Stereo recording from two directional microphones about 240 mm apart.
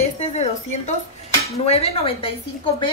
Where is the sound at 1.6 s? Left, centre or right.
Left.